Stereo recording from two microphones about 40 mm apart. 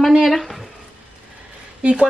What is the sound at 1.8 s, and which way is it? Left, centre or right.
Speech, right.